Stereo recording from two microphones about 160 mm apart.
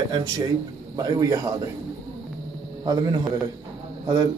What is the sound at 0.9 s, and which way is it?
Speech, 25° right (ahead or behind).